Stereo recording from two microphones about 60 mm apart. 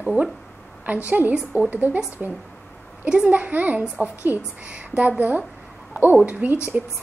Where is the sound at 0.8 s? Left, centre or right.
Right.